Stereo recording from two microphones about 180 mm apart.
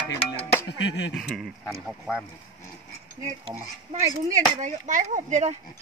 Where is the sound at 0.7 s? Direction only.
80° left.